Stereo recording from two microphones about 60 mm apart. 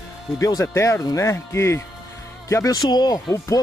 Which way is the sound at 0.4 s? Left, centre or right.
Left.